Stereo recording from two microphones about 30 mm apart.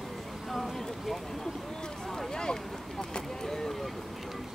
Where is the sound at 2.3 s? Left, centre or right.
Left.